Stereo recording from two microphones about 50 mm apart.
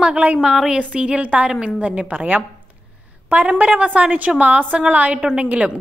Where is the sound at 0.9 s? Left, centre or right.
Right.